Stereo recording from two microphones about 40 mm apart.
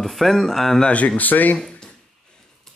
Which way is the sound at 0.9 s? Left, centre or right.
Left.